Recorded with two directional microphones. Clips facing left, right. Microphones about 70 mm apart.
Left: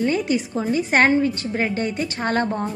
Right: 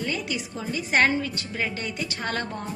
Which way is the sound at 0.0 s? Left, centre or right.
Left.